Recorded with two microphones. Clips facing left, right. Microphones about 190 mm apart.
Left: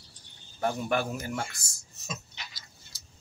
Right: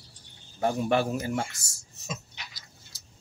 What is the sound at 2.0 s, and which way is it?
Dog, 20° right (ahead or behind).